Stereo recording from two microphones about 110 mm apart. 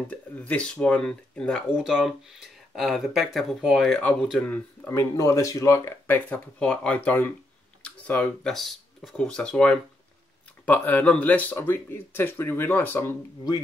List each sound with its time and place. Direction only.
0.1 s speech: 10° left (ahead or behind)
1.8 s speech: 5° right (ahead or behind)
4.5 s speech: 20° left (ahead or behind)